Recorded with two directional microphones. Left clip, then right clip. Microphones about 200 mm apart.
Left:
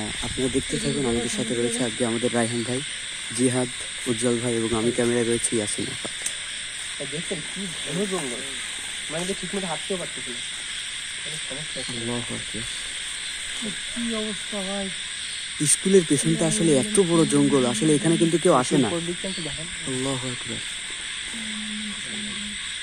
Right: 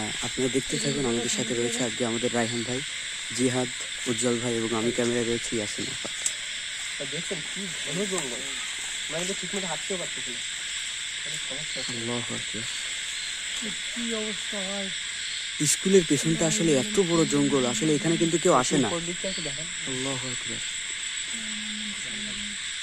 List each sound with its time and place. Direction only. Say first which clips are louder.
0.4 s speech: left 2 dB; 25° right (ahead or behind); by 2.8 s 10° right (ahead or behind)
4.1 s speech: left 3 dB; 15° right (ahead or behind)
15.6 s speech: left 2 dB; 25° right (ahead or behind)